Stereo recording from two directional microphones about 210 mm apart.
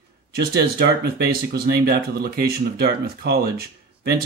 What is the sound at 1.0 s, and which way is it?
Speech, 50° right (ahead or behind).